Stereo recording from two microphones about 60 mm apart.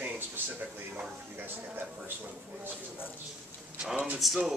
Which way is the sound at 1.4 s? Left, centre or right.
Right.